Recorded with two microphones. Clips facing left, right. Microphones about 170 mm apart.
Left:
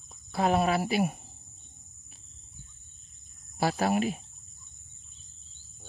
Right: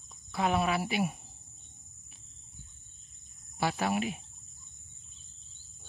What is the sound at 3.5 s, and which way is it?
Speech, 40° left (ahead or behind).